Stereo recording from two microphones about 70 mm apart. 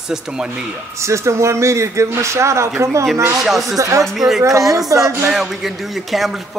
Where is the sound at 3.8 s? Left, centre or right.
Right.